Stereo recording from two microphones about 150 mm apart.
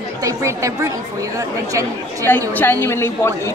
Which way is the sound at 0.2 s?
20° right (ahead or behind).